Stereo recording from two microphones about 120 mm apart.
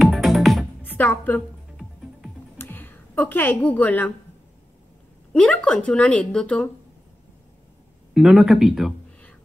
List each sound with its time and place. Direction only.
0.0 s music: centre (ahead or behind)
0.8 s a woman's voice: 10° left (ahead or behind)
2.5 s a sound: 15° left (ahead or behind)
5.3 s a woman's voice: 10° left (ahead or behind)
8.1 s speech: 5° right (ahead or behind)